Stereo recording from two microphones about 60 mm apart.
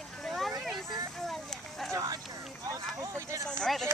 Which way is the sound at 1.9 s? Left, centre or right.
Right.